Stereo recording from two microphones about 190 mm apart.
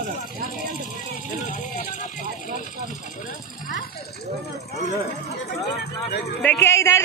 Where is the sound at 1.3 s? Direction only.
40° left (ahead or behind).